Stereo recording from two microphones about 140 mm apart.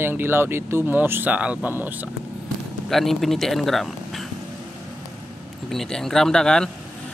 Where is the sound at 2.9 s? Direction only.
Centre (ahead or behind).